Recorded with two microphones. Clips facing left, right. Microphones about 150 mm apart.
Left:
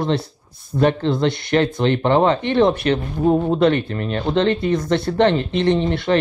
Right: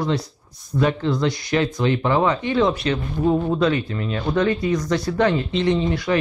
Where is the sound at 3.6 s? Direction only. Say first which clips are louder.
Left 3 dB; 60° left (ahead or behind).